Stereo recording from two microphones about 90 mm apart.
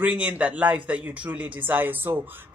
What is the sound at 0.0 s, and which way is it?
Speech, 15° right (ahead or behind).